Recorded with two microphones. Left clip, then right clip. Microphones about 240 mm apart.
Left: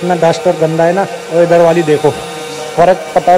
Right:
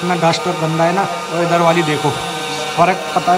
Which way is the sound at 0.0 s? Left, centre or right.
Centre.